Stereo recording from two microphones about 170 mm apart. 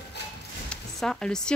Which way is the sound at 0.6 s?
Centre (ahead or behind).